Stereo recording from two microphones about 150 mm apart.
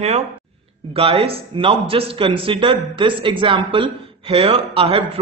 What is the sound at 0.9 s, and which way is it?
Speech, 40° right (ahead or behind).